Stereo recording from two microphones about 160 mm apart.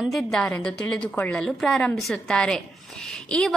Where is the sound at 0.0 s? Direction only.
Centre (ahead or behind).